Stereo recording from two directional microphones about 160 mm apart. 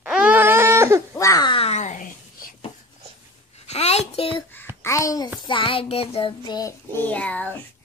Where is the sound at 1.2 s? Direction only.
25° left (ahead or behind).